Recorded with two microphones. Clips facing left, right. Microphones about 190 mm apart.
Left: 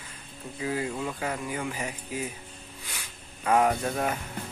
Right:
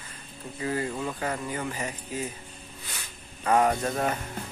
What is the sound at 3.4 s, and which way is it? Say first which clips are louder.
Speech: even; 5° left (ahead or behind).